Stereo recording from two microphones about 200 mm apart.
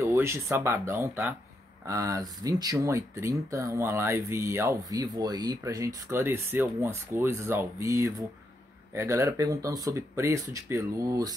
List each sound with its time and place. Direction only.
0.0 s speech: 15° right (ahead or behind)